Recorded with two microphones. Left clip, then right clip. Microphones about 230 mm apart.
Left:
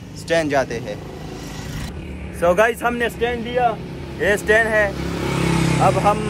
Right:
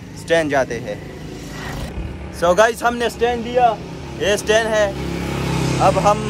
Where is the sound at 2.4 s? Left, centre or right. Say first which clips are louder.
Right 2 dB; centre.